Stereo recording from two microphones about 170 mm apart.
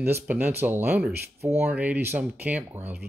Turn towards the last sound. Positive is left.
turn(degrees=-10)  # may be behind; listen again after turning